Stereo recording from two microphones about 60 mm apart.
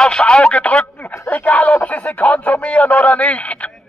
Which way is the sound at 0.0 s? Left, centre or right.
Centre.